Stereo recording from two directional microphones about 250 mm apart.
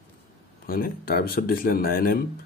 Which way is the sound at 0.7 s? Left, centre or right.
Left.